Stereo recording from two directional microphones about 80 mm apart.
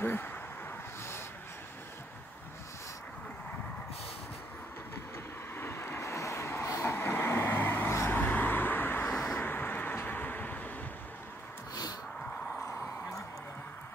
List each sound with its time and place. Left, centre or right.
0.0 s vehicle: left
5.6 s vehicle: left
9.1 s vehicle: centre
9.4 s vehicle: left